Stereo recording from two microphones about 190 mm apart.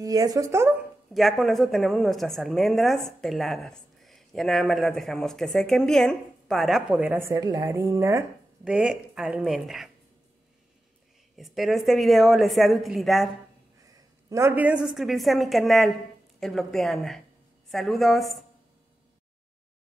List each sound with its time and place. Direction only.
0.0 s speech: 20° right (ahead or behind)
1.1 s a woman's voice: centre (ahead or behind)
11.3 s a woman's voice: centre (ahead or behind)
13.9 s a woman's voice: 15° right (ahead or behind)